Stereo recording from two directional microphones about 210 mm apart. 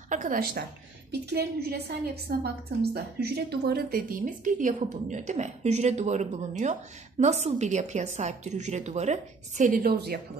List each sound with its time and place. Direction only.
0.1 s a woman's voice: 40° right (ahead or behind)